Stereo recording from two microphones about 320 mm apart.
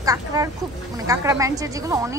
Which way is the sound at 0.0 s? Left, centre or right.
Centre.